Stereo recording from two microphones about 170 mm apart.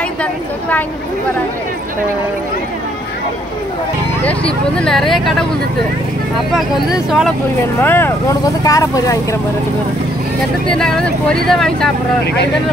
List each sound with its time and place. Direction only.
0.2 s a woman's voice: 10° left (ahead or behind)
4.2 s speech: 5° left (ahead or behind)
6.5 s speech: centre (ahead or behind)
7.8 s speech: 10° left (ahead or behind)
10.7 s speech: 5° left (ahead or behind)